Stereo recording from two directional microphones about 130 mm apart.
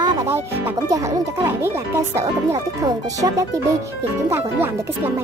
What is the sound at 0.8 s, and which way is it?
Speech, 20° right (ahead or behind).